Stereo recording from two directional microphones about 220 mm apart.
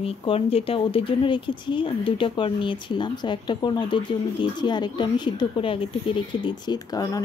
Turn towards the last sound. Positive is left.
turn(degrees=15)  # may be behind; listen again after turning